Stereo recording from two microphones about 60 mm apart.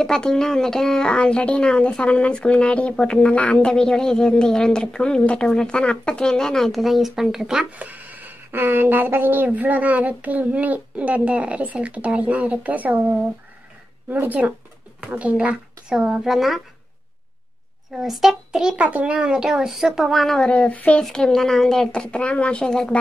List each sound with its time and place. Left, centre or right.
0.0 s a woman's voice: centre
3.5 s a woman's voice: centre
7.7 s speech: right; by 16.6 s centre
17.9 s speech: centre
18.8 s speech: right
19.1 s speech: centre
20.3 s speech: centre
21.0 s a woman's voice: centre